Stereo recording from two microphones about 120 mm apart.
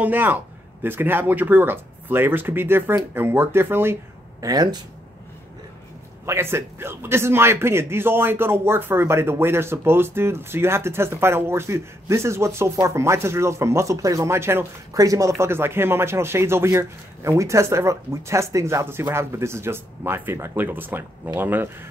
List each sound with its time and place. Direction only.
0.0 s a man's voice: 15° right (ahead or behind); by 4.7 s 30° right (ahead or behind)
6.2 s a man's voice: 20° right (ahead or behind)